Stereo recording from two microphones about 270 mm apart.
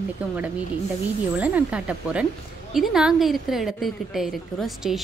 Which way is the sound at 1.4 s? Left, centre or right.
Centre.